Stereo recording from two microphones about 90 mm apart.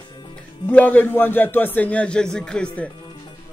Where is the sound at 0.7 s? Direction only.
20° left (ahead or behind).